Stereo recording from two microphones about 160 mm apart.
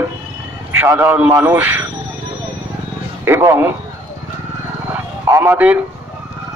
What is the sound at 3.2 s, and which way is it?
Speech, 15° right (ahead or behind).